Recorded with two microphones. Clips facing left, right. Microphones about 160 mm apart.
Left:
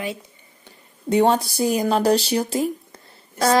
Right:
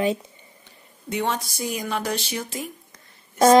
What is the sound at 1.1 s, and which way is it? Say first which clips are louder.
Speech: left 9 dB; 35° left (ahead or behind).